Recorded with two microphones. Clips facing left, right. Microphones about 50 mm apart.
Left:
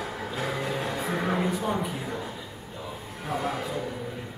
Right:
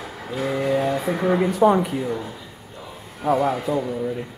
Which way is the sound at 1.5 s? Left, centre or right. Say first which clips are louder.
Right 11 dB; right.